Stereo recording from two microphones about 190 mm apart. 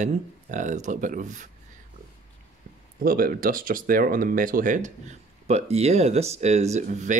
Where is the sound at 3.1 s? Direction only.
50° right (ahead or behind).